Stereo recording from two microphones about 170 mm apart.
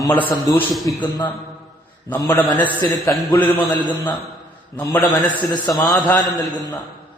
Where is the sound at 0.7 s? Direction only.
Centre (ahead or behind).